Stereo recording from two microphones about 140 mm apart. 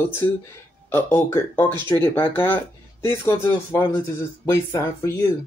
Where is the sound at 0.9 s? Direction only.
15° left (ahead or behind).